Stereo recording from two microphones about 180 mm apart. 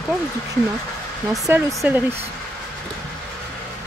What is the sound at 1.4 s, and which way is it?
Speech, 15° right (ahead or behind).